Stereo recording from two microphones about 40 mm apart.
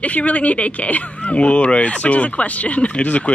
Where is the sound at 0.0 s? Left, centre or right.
Left.